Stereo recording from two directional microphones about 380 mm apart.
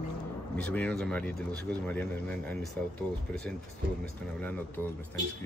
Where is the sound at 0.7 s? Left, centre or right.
Centre.